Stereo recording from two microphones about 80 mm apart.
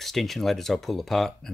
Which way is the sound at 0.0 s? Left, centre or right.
Centre.